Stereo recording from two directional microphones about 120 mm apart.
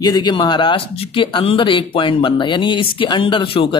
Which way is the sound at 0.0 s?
35° left (ahead or behind).